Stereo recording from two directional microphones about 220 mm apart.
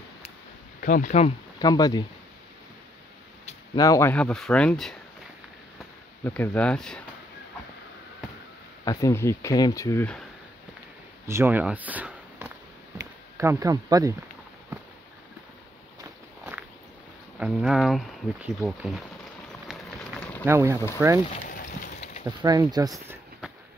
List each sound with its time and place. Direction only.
0.7 s speech: 40° left (ahead or behind)
1.6 s speech: 20° left (ahead or behind)
3.7 s speech: 15° left (ahead or behind)
6.2 s speech: 10° left (ahead or behind)
8.8 s speech: 15° left (ahead or behind)
11.2 s speech: 10° right (ahead or behind)
17.4 s speech: 5° right (ahead or behind)
19.7 s run: centre (ahead or behind)
20.4 s speech: 10° right (ahead or behind)
21.3 s a sound: 35° left (ahead or behind)
22.4 s speech: 20° right (ahead or behind)